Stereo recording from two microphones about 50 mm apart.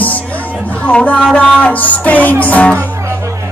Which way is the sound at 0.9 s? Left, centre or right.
Left.